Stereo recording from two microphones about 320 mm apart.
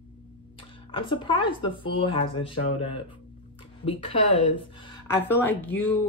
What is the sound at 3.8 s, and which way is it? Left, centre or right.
Speech, centre.